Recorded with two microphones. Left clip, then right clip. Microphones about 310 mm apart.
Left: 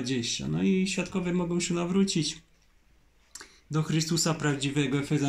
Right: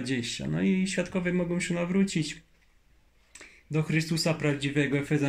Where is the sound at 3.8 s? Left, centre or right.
Right.